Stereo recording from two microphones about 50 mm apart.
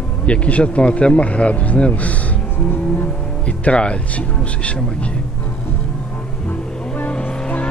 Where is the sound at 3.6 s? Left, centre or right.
Left.